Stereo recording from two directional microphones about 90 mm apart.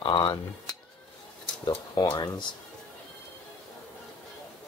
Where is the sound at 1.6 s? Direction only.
55° left (ahead or behind).